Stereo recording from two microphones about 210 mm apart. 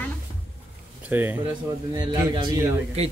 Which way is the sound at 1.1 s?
10° right (ahead or behind).